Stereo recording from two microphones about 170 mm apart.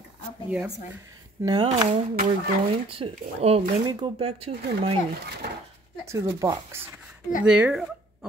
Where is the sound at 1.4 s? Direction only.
25° right (ahead or behind).